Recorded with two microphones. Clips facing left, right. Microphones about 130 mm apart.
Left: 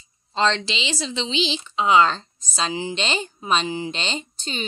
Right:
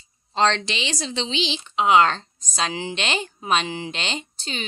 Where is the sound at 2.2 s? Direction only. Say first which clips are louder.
Even; 10° left (ahead or behind).